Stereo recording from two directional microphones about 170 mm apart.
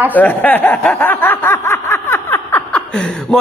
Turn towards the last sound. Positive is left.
turn(degrees=5)  # may be behind; listen again after turning